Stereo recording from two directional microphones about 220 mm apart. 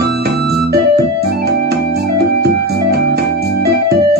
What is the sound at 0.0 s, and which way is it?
Organ, 45° right (ahead or behind).